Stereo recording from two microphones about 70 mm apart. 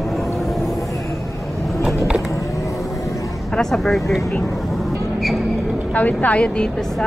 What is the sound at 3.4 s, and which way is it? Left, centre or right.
Speech, centre.